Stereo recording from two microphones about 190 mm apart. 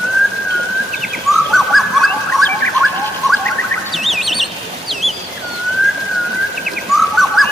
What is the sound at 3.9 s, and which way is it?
Chirp, centre (ahead or behind).